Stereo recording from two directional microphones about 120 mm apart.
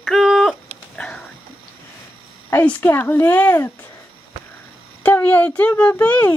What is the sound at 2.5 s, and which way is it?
A woman's voice, 15° left (ahead or behind).